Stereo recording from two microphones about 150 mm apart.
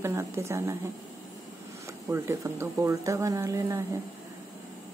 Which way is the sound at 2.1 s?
20° right (ahead or behind).